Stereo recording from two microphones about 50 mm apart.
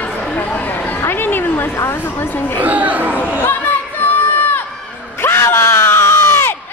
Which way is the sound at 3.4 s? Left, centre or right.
Left.